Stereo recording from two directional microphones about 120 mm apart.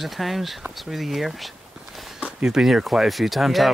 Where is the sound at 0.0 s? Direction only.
Centre (ahead or behind).